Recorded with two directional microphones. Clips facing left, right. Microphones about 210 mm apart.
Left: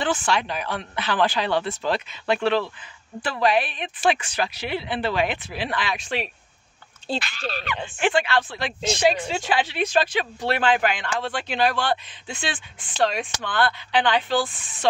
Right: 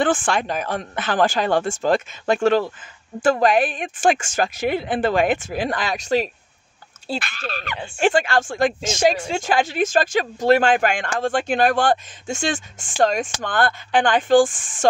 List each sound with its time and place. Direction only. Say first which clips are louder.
0.0 s speech: right 4 dB; 50° right (ahead or behind)
7.2 s speech: even; 50° right (ahead or behind)